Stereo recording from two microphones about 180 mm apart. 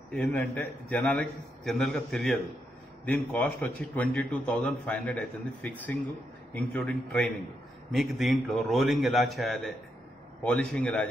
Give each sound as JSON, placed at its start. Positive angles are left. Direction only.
{"t": 0.1, "sound": "a man's voice", "side_deg": 5}